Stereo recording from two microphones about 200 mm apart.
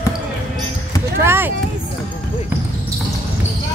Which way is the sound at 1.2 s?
10° right (ahead or behind).